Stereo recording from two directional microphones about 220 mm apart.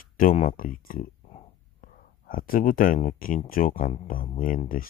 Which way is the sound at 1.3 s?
40° left (ahead or behind).